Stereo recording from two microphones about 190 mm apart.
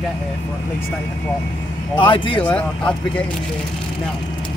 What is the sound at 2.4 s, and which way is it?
Speech, 5° left (ahead or behind).